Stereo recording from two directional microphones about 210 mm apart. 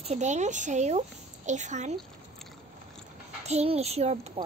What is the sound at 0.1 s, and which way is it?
A child's voice, 35° right (ahead or behind).